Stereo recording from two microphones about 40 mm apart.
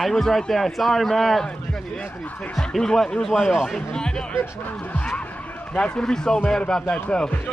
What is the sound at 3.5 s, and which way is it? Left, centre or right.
Speech, centre.